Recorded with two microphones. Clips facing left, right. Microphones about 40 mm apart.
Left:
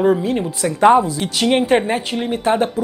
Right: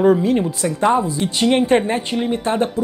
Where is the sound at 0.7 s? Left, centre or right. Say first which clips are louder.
Left 5 dB; left.